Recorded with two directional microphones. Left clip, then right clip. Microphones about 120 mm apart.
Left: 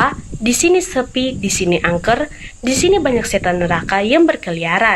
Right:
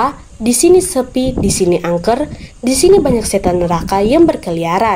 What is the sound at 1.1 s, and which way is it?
A woman's voice, 70° right (ahead or behind).